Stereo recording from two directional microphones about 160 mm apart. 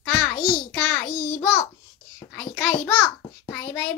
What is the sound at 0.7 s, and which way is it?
Speech, 10° left (ahead or behind).